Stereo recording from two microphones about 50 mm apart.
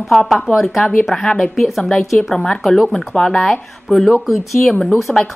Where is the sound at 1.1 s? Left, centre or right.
Centre.